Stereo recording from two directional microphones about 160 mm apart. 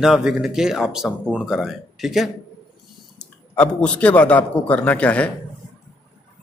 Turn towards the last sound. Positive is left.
turn(degrees=10)  # may be behind; listen again after turning